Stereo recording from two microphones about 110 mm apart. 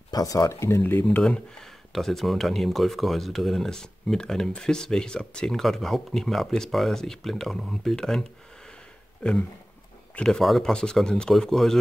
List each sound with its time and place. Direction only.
0.1 s speech: 35° left (ahead or behind)
1.2 s speech: 5° left (ahead or behind)